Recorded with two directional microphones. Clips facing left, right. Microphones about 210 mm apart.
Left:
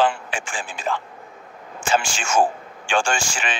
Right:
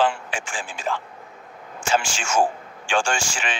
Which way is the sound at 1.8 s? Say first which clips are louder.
Left 1 dB; 55° left (ahead or behind).